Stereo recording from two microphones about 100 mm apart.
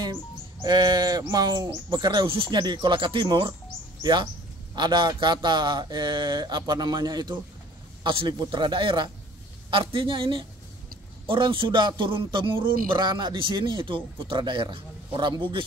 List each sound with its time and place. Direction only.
0.0 s music: 45° right (ahead or behind)
1.3 s speech: 45° right (ahead or behind)
8.0 s speech: 55° right (ahead or behind)